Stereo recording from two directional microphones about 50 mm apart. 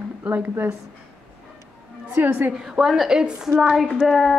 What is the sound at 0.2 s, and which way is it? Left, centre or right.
Speech, right.